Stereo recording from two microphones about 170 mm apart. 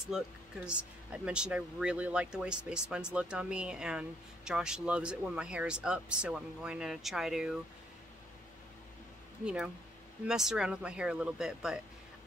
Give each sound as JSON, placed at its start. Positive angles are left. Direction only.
{"t": 0.7, "sound": "speech", "side_deg": -5}
{"t": 9.4, "sound": "speech", "side_deg": -5}